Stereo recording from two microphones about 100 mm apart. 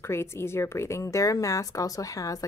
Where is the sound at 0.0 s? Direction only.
25° left (ahead or behind).